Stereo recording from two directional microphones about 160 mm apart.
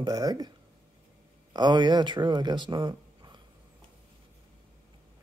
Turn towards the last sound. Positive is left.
turn(degrees=-25)  # may be behind; listen again after turning